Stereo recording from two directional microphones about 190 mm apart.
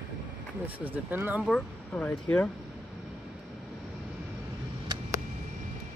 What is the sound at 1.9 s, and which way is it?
Speech, 10° left (ahead or behind).